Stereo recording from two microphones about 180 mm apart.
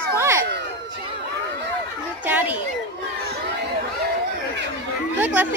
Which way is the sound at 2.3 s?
10° right (ahead or behind).